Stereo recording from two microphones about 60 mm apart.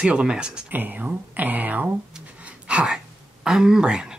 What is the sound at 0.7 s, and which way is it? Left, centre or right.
Speech, right.